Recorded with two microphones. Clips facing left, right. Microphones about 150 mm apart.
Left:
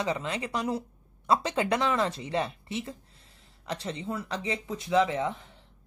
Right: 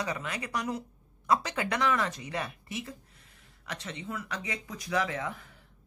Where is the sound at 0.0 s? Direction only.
25° left (ahead or behind).